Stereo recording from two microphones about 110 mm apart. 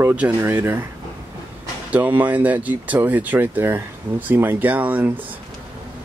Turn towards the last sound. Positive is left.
turn(degrees=-15)  # may be behind; listen again after turning